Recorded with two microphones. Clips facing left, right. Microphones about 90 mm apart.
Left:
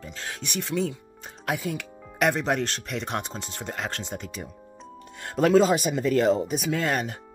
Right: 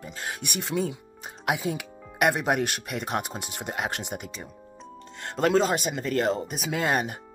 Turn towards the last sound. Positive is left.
turn(degrees=-10)  # may be behind; listen again after turning